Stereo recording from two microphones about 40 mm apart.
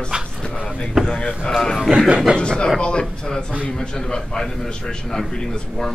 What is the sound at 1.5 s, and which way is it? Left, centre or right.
A man's voice, centre.